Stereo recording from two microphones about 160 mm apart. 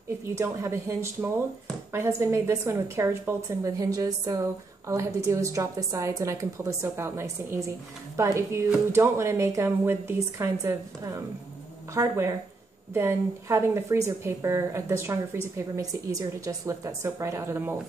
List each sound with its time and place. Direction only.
0.3 s a woman's voice: 15° right (ahead or behind)